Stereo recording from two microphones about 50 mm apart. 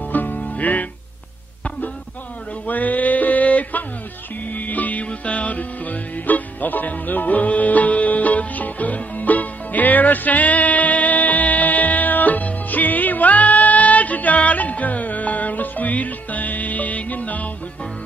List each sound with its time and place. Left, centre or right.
0.0 s music: left
2.6 s male singing: left
4.5 s music: left